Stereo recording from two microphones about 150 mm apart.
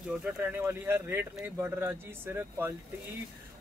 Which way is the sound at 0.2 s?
10° right (ahead or behind).